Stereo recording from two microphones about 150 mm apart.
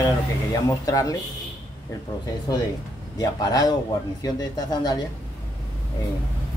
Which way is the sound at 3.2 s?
25° left (ahead or behind).